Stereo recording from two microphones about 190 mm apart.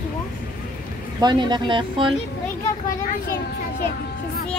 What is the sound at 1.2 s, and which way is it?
Speech, 25° right (ahead or behind).